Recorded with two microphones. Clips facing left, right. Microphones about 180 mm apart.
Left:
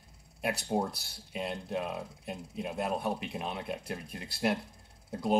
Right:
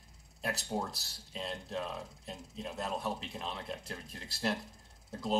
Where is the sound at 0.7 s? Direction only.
20° left (ahead or behind).